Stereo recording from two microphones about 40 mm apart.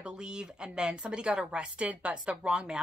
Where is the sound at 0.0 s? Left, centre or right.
Right.